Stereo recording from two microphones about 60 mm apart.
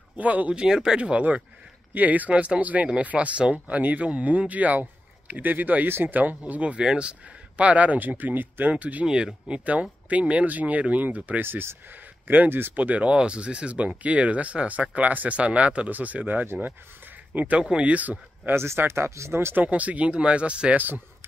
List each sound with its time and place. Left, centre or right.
0.2 s speech: right
9.0 s speech: centre
11.4 s speech: right
18.5 s speech: right
19.6 s speech: right
20.7 s speech: right